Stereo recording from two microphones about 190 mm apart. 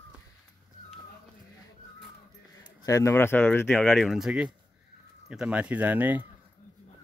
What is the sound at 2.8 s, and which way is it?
Speech, 15° left (ahead or behind).